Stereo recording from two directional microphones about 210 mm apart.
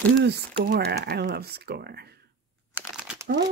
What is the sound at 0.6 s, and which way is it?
Speech, 50° right (ahead or behind).